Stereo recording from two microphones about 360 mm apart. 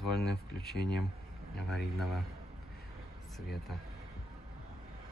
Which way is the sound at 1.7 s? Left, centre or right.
Centre.